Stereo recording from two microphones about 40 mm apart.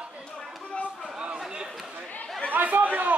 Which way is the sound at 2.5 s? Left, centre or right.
Right.